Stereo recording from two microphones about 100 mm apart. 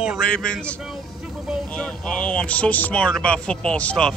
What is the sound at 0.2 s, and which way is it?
Speech, 10° left (ahead or behind).